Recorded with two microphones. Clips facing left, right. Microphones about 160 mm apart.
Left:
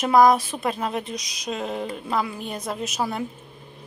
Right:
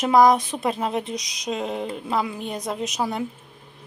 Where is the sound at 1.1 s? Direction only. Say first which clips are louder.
Right 2 dB; 20° right (ahead or behind).